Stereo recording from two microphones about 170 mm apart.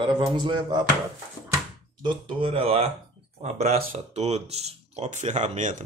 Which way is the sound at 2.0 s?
30° right (ahead or behind).